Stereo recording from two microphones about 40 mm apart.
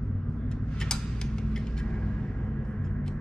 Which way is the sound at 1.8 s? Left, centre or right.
Left.